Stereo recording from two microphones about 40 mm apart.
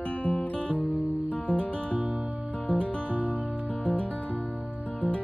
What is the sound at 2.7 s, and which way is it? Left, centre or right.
Music, left.